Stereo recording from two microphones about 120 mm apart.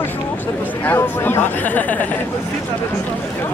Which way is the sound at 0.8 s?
20° left (ahead or behind).